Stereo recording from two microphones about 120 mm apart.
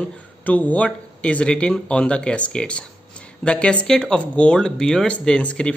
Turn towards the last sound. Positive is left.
turn(degrees=10)  # may be behind; listen again after turning